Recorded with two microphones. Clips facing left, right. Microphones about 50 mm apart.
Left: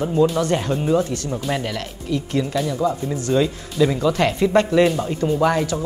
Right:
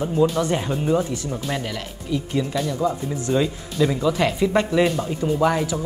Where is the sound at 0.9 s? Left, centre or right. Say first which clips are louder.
Left 2 dB; centre.